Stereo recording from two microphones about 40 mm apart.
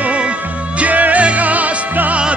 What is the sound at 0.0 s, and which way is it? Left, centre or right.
Music, right.